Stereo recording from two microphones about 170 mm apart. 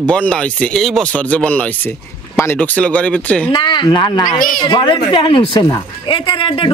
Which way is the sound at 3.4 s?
30° left (ahead or behind).